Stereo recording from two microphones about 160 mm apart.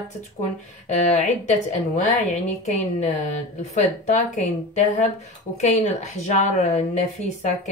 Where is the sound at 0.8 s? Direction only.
45° left (ahead or behind).